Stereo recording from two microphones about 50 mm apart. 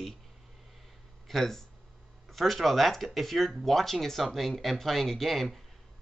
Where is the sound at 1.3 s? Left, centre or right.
Centre.